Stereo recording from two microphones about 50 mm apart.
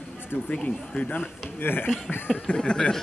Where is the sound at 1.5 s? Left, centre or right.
Left.